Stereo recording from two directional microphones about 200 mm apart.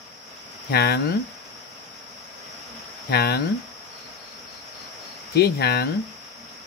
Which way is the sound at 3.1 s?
55° left (ahead or behind).